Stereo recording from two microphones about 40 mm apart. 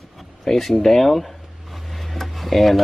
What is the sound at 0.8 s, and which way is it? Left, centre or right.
Speech, centre.